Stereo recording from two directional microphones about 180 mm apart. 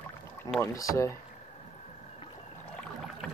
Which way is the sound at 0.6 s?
15° left (ahead or behind).